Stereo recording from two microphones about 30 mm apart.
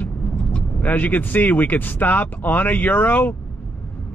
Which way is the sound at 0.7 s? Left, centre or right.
Left.